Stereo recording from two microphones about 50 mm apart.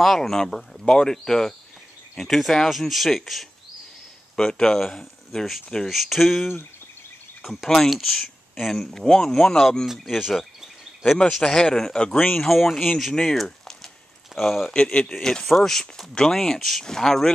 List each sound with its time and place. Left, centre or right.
0.0 s speech: centre
4.4 s speech: centre
10.0 s speech: centre
11.2 s speech: centre
12.4 s speech: centre
14.7 s speech: centre